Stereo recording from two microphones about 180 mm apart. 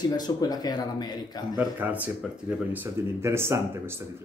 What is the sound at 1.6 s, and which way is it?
Speech, 10° right (ahead or behind).